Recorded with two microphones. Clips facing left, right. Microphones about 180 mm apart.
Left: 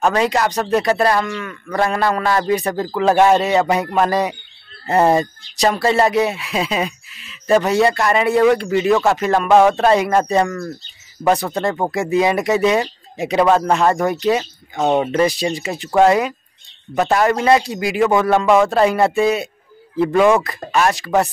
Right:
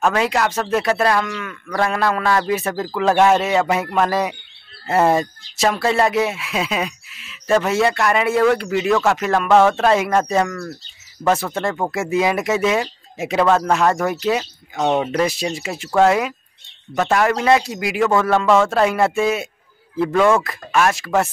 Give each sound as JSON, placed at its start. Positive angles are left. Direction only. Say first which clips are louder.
{"t": 0.0, "sound": "speech", "louder": "left 2 dB", "side_deg": 0}
{"t": 9.5, "sound": "speech", "louder": "left 2 dB", "side_deg": 15}
{"t": 9.8, "sound": "speech", "louder": "left 2 dB", "side_deg": 0}
{"t": 11.9, "sound": "speech", "louder": "left 2 dB", "side_deg": 0}
{"t": 14.8, "sound": "speech", "louder": "left 2 dB", "side_deg": 10}
{"t": 15.0, "sound": "speech", "louder": "left 3 dB", "side_deg": 0}
{"t": 18.3, "sound": "speech", "louder": "left 1 dB", "side_deg": 15}
{"t": 18.7, "sound": "speech", "louder": "left 2 dB", "side_deg": 0}
{"t": 20.1, "sound": "speech", "louder": "left 2 dB", "side_deg": 15}
{"t": 20.4, "sound": "speech", "louder": "left 1 dB", "side_deg": 0}